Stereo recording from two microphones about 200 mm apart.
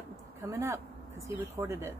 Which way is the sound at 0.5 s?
15° right (ahead or behind).